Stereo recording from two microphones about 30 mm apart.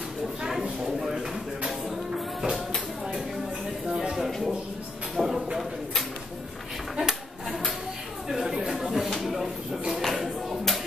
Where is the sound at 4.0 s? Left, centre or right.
Centre.